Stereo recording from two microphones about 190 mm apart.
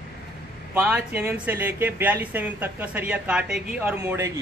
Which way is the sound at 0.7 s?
10° right (ahead or behind).